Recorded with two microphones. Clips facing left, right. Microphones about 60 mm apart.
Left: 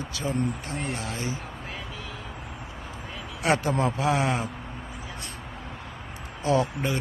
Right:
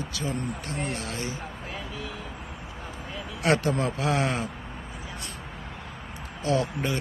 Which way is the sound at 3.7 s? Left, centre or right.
Left.